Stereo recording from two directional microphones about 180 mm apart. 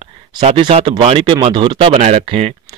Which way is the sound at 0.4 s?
35° right (ahead or behind).